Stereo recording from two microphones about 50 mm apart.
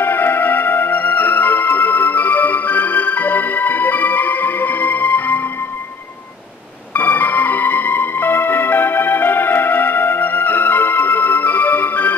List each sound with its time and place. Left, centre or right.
0.0 s music: left
6.9 s music: left